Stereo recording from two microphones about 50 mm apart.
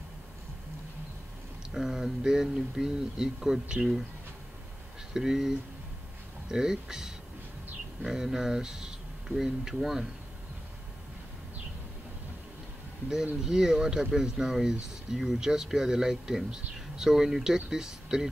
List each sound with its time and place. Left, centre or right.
1.7 s speech: centre
5.1 s speech: centre
6.5 s speech: centre
13.4 s speech: centre